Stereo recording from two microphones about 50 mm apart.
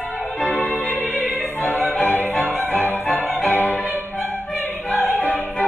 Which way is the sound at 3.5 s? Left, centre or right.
Left.